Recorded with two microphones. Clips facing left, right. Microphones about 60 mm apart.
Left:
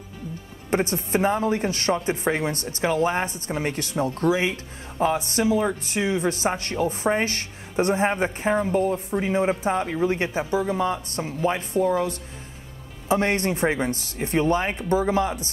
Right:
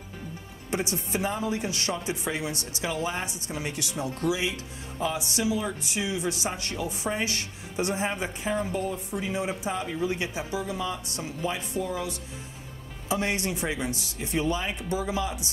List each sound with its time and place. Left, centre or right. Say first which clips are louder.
0.7 s speech: left 6 dB; left